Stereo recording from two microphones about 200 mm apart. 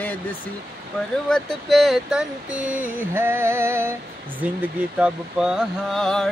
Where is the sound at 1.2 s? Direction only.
5° left (ahead or behind).